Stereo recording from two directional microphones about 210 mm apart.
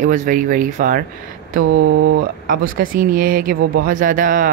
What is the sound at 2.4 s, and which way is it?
Speech, 40° right (ahead or behind).